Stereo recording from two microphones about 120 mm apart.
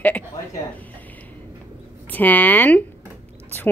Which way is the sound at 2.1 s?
15° left (ahead or behind).